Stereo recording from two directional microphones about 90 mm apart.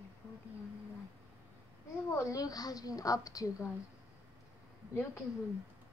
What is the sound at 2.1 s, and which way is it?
A woman's voice, 35° left (ahead or behind).